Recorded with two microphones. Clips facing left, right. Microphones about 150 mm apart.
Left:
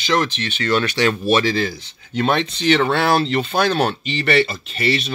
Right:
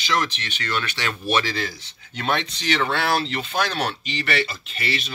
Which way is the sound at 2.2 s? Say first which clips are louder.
Left 6 dB; 30° left (ahead or behind).